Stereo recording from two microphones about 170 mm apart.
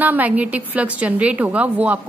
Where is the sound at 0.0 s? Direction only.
10° right (ahead or behind).